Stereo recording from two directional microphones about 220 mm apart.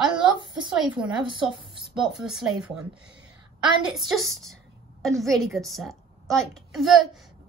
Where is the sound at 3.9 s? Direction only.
Centre (ahead or behind).